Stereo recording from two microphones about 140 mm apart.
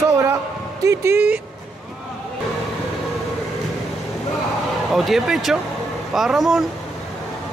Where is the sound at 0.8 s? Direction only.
20° right (ahead or behind).